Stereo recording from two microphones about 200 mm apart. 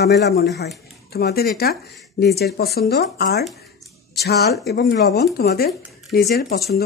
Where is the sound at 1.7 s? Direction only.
Centre (ahead or behind).